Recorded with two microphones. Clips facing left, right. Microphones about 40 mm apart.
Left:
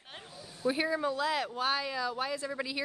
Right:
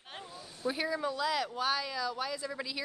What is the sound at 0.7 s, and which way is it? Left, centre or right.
A man's voice, centre.